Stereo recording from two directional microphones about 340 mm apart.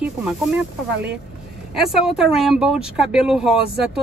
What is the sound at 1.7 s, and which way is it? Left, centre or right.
Speech, centre.